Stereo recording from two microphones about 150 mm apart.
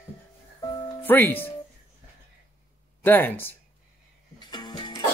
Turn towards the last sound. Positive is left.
turn(degrees=30)  # may be behind; listen again after turning